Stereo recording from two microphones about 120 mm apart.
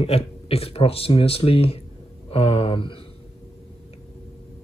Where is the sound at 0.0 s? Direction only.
55° left (ahead or behind).